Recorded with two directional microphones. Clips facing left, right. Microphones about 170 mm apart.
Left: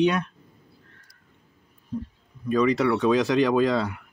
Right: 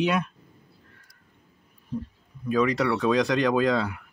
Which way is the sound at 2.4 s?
Centre (ahead or behind).